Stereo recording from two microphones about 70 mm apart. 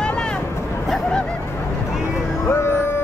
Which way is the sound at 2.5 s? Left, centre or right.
Left.